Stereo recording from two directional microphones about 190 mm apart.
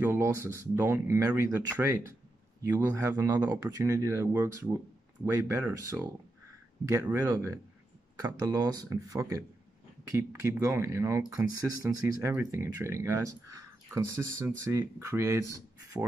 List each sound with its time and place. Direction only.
0.0 s speech: 10° right (ahead or behind)